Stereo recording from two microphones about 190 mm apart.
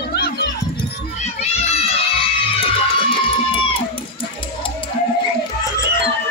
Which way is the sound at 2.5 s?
30° left (ahead or behind).